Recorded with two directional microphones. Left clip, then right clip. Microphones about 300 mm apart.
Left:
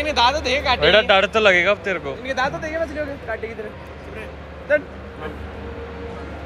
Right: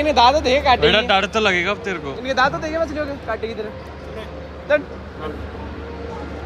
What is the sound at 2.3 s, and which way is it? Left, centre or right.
Speech, right.